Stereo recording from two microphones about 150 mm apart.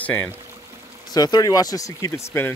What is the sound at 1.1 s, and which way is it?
Speech, 25° left (ahead or behind).